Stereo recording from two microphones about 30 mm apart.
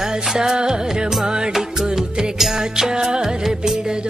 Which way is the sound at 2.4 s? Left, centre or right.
Centre.